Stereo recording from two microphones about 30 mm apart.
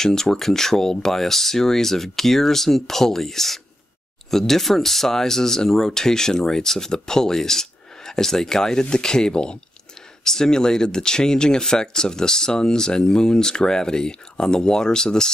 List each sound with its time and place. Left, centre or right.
0.0 s speech: centre
10.2 s speech: centre